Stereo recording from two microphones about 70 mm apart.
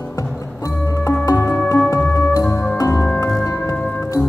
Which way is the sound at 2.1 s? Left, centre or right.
Left.